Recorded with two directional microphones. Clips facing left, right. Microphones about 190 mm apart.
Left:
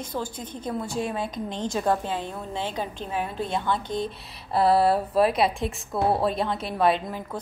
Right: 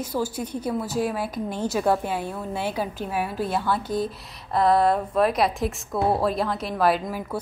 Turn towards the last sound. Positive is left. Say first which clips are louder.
# right 1 dB
turn(degrees=-5)  # may be behind; listen again after turning